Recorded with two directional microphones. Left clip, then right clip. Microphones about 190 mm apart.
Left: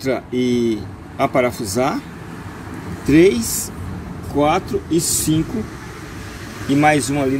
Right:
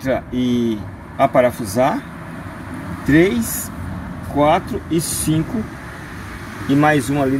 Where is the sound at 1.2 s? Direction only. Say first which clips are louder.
Right 3 dB; 15° right (ahead or behind).